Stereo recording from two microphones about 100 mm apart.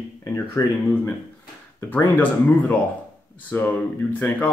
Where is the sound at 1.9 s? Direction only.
20° left (ahead or behind).